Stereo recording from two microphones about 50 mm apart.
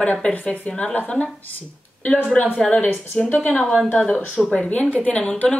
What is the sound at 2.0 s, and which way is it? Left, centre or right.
Speech, left.